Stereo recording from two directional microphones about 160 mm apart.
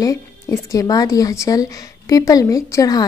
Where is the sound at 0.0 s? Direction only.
20° left (ahead or behind).